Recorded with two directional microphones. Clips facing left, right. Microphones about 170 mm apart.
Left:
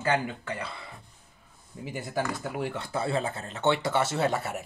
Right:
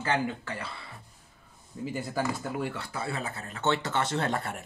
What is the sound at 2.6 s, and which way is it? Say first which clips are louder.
Speech: left 3 dB; 25° left (ahead or behind).